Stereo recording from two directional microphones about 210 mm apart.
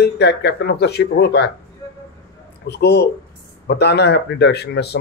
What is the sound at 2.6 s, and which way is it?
A man's voice, 50° left (ahead or behind).